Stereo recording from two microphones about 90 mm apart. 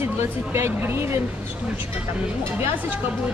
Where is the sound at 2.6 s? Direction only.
25° right (ahead or behind).